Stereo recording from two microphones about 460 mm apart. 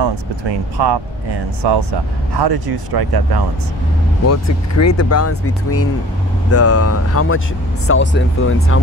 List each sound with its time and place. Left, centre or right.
0.0 s speech: right
4.3 s speech: left